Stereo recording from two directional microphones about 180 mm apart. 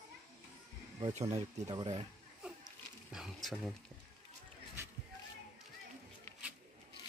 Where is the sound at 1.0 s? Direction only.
35° right (ahead or behind).